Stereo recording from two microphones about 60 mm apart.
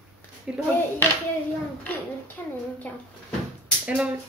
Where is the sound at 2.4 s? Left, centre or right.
Left.